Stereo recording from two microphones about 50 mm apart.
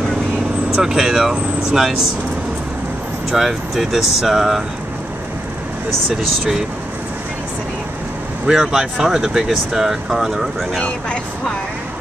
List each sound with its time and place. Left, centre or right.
0.8 s speech: centre
3.3 s speech: centre
8.5 s speech: centre